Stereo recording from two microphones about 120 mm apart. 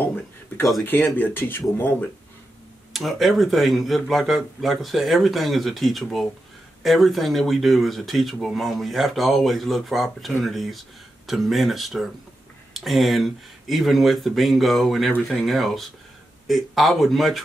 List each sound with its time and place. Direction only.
0.0 s a sound: 15° left (ahead or behind)
0.8 s speech: 15° left (ahead or behind)
2.9 s speech: centre (ahead or behind)